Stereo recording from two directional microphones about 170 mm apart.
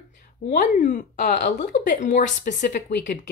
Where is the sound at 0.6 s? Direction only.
50° left (ahead or behind).